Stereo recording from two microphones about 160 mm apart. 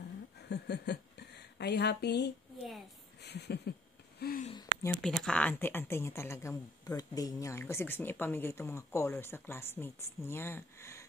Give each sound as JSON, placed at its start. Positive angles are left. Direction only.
{"t": 0.5, "sound": "a sound", "side_deg": 90}
{"t": 4.2, "sound": "speech", "side_deg": 65}
{"t": 5.0, "sound": "speech", "side_deg": 5}